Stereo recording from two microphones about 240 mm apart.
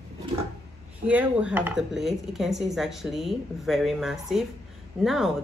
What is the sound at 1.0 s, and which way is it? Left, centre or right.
A woman's voice, centre.